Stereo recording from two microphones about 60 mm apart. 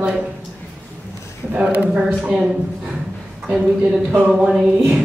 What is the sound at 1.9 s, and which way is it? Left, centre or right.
A woman's voice, centre.